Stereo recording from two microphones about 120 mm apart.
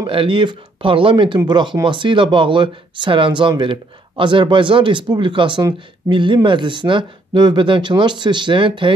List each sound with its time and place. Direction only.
0.0 s speech: 45° right (ahead or behind)